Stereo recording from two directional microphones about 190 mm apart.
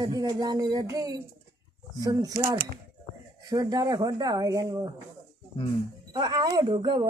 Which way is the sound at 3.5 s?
20° right (ahead or behind).